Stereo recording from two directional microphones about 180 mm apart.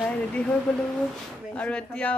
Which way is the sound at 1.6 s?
5° left (ahead or behind).